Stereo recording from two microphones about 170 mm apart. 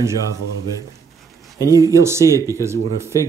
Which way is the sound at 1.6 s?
20° right (ahead or behind).